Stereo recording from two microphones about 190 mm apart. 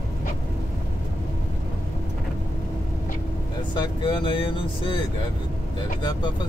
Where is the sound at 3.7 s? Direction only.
20° left (ahead or behind).